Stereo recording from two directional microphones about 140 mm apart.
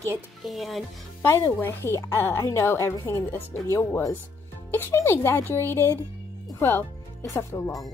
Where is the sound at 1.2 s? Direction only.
20° left (ahead or behind).